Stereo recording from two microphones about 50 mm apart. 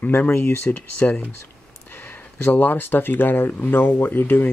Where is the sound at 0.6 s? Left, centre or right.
Left.